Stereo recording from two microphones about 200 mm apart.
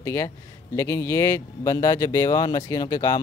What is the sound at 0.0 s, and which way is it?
Speech, 15° left (ahead or behind).